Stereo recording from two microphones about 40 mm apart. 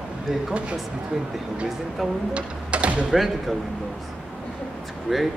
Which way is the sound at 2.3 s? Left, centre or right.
Right.